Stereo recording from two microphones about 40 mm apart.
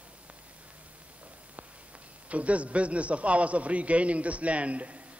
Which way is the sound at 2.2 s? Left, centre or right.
Right.